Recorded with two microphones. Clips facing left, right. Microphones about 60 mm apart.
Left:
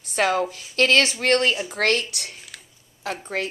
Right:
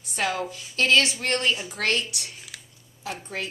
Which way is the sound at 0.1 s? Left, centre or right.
Left.